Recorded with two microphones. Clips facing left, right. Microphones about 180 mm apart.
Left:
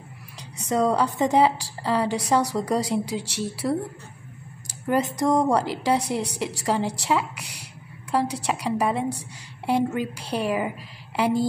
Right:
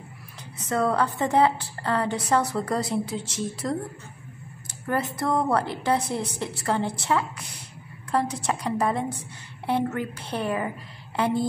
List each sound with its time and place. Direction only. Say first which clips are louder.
0.7 s a woman's voice: left 2 dB; 15° left (ahead or behind)
4.8 s a woman's voice: left 4 dB; 15° left (ahead or behind)